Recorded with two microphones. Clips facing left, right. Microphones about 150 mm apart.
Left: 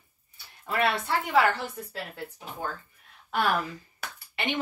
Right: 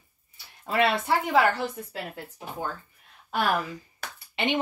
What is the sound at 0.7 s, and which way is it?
Speech, 20° right (ahead or behind).